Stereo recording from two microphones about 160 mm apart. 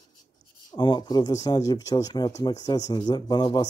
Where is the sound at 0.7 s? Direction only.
30° left (ahead or behind).